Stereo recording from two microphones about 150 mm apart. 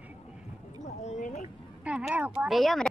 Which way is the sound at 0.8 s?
50° left (ahead or behind).